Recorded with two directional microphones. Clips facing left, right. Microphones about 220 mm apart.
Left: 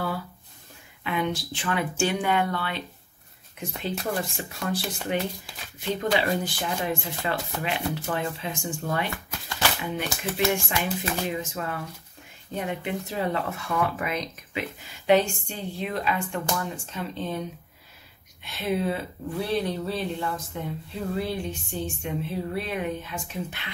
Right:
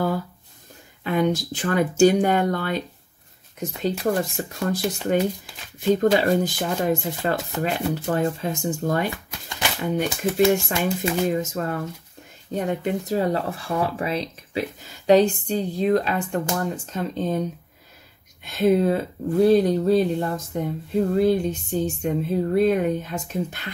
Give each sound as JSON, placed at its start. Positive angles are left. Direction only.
{"t": 1.0, "sound": "speech", "side_deg": -40}
{"t": 4.4, "sound": "speech", "side_deg": -40}
{"t": 5.9, "sound": "speech", "side_deg": -45}
{"t": 9.1, "sound": "shuffling cards", "side_deg": -20}
{"t": 9.8, "sound": "speech", "side_deg": -40}
{"t": 18.4, "sound": "speech", "side_deg": -45}